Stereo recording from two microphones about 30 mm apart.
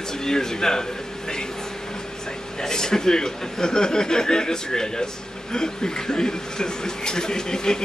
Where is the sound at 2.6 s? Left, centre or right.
Centre.